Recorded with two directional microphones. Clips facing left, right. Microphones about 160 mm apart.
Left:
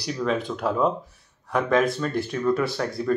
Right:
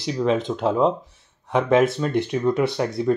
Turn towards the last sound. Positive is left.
turn(degrees=-20)  # may be behind; listen again after turning